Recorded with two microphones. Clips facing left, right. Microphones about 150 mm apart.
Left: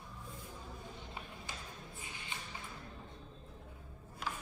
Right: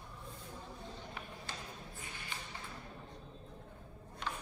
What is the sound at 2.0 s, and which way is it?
Music, 20° left (ahead or behind).